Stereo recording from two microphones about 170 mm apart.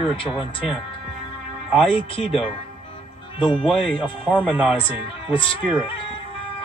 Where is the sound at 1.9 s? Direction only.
30° left (ahead or behind).